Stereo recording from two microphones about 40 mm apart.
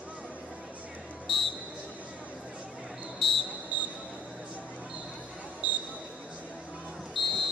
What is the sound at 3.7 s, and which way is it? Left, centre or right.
Basketball bounce, right.